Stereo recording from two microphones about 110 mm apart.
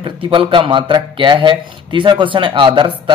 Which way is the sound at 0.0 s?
50° right (ahead or behind).